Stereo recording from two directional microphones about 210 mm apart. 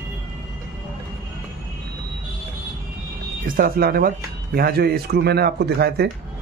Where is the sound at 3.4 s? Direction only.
45° right (ahead or behind).